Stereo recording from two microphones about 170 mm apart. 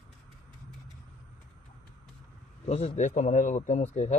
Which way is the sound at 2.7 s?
40° left (ahead or behind).